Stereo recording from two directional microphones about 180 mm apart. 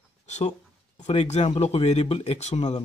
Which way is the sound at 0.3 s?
40° left (ahead or behind).